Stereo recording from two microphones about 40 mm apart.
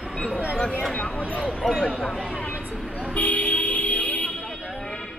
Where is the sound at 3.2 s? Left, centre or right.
Left.